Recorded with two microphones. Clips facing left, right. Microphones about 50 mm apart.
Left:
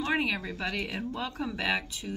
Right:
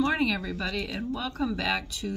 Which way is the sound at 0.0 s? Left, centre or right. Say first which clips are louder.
Right 3 dB; left.